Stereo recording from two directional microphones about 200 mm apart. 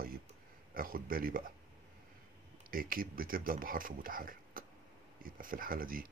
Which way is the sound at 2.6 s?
45° right (ahead or behind).